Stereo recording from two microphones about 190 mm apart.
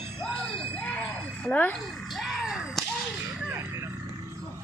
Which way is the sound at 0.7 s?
5° left (ahead or behind).